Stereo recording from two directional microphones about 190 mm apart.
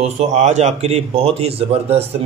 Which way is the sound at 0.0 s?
35° right (ahead or behind).